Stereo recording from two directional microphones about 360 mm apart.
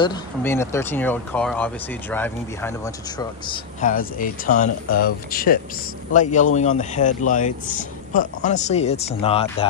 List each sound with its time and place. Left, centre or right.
0.0 s speech: centre